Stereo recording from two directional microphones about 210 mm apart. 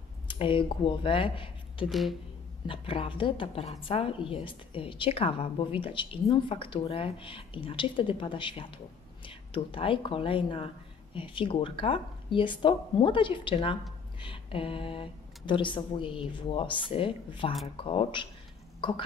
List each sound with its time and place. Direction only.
0.3 s speech: 25° left (ahead or behind)
1.9 s speech: centre (ahead or behind)
2.6 s a woman's voice: 25° left (ahead or behind)